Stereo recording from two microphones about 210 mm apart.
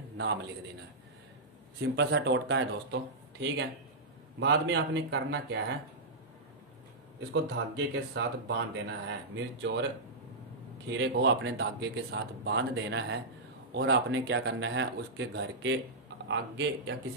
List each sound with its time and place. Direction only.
1.8 s speech: 55° right (ahead or behind)
7.5 s speech: 60° right (ahead or behind)
10.9 s speech: 55° right (ahead or behind)